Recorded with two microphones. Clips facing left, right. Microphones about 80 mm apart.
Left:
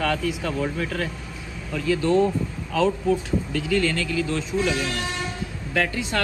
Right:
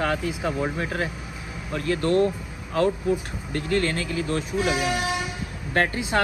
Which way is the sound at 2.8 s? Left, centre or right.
Left.